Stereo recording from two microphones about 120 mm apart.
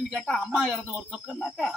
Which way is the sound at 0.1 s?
Centre (ahead or behind).